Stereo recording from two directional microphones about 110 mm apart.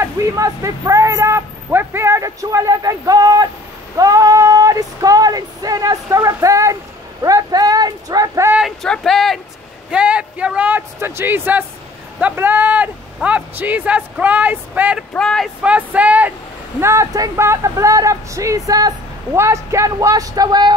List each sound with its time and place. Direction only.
0.0 s speech: 30° right (ahead or behind)
7.2 s a sound: 35° right (ahead or behind)
8.8 s speech: 5° left (ahead or behind)
9.8 s speech: 10° right (ahead or behind)
15.1 s speech: 5° left (ahead or behind)
15.6 s speech: 10° right (ahead or behind)
16.8 s speech: 25° right (ahead or behind)